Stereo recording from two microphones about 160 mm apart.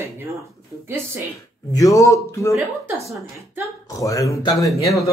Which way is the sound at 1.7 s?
20° left (ahead or behind).